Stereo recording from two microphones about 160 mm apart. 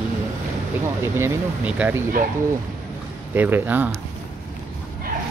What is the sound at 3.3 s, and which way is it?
Speech, 10° right (ahead or behind).